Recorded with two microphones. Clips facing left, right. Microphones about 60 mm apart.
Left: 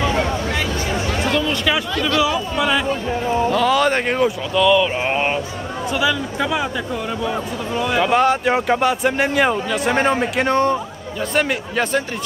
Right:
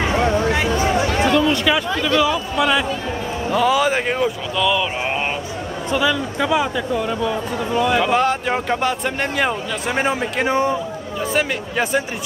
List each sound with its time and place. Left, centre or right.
1.0 s a sound: right
1.5 s chatter: centre
2.1 s speech: centre
5.0 s speech: centre